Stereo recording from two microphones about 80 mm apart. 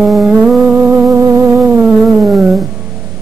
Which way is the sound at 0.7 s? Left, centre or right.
Right.